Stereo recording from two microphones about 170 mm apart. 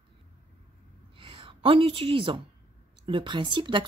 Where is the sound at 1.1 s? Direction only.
30° right (ahead or behind).